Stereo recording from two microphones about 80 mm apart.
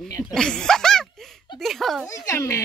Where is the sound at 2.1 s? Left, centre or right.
Left.